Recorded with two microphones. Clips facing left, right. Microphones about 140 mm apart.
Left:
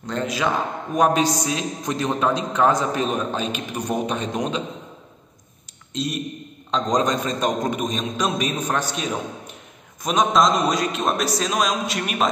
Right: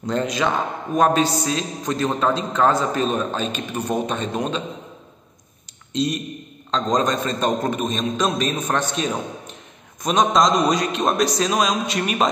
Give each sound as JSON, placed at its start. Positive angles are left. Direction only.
{"t": 0.0, "sound": "a man's voice", "side_deg": 0}
{"t": 0.9, "sound": "a man's voice", "side_deg": 15}
{"t": 6.7, "sound": "a man's voice", "side_deg": 10}